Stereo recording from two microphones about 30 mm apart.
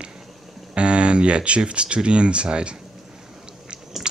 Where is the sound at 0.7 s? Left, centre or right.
Right.